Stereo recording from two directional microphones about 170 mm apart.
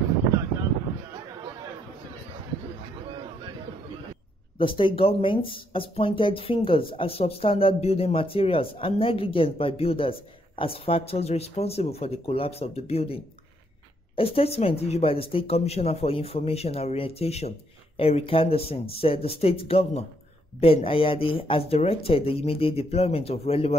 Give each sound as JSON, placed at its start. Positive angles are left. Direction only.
{"t": 4.6, "sound": "speech", "side_deg": 30}